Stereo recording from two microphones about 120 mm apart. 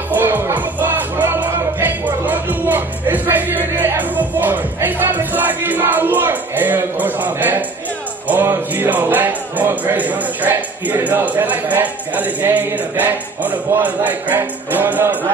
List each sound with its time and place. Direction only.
0.1 s music: 15° right (ahead or behind)
8.3 s speech: 15° right (ahead or behind)